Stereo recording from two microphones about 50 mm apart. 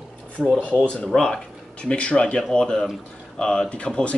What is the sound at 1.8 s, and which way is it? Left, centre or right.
Speech, left.